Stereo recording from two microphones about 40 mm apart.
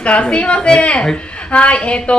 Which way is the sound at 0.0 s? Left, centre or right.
Left.